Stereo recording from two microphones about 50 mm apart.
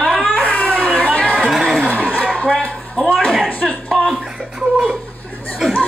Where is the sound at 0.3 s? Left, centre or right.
Left.